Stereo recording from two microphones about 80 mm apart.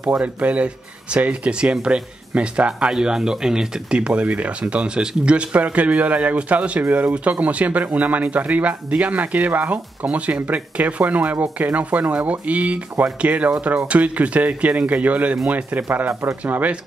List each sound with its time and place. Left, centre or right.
0.0 s speech: centre